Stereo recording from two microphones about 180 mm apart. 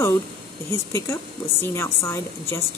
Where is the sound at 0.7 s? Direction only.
15° left (ahead or behind).